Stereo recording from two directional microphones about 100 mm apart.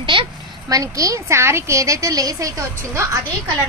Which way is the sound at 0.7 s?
35° right (ahead or behind).